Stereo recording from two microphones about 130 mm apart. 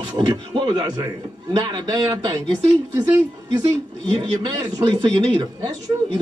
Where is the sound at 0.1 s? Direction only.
35° right (ahead or behind).